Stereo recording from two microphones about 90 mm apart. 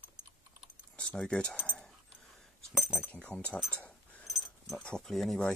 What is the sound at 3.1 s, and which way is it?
Speech, 15° left (ahead or behind).